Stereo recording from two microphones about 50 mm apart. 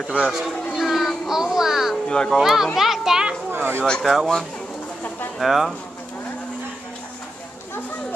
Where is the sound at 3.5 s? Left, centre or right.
Right.